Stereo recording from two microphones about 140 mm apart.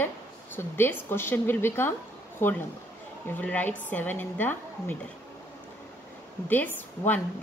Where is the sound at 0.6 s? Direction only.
15° left (ahead or behind).